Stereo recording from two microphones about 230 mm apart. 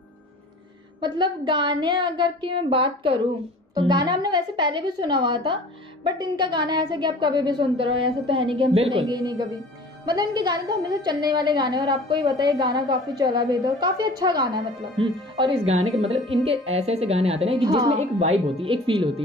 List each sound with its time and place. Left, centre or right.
1.0 s a woman's voice: centre